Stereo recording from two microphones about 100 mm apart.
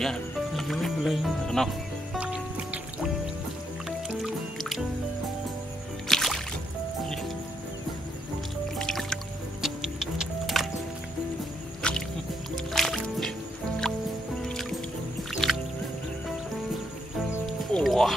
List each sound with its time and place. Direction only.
0.0 s speech: 5° left (ahead or behind)
2.1 s music: 10° right (ahead or behind)
4.2 s music: centre (ahead or behind)
6.0 s music: 5° left (ahead or behind)
8.7 s music: 5° left (ahead or behind)
11.8 s music: 10° left (ahead or behind)
14.4 s music: 5° left (ahead or behind)
17.7 s music: centre (ahead or behind)